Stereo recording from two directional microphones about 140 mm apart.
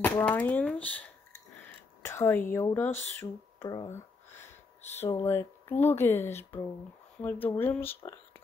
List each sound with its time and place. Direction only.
0.2 s speech: 10° left (ahead or behind)
3.5 s speech: 30° left (ahead or behind)
3.9 s a sound: 15° left (ahead or behind)
4.9 s speech: 15° left (ahead or behind)